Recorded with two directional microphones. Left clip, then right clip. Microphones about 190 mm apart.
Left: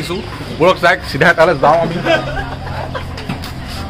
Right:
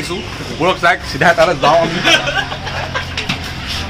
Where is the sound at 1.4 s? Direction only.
45° left (ahead or behind).